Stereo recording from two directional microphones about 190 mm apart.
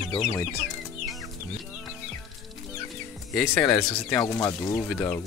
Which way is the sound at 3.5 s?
5° left (ahead or behind).